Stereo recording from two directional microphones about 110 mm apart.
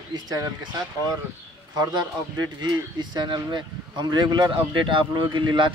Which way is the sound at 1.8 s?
40° right (ahead or behind).